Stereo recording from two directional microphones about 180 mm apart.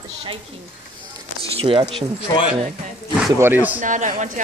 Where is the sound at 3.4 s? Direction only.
10° right (ahead or behind).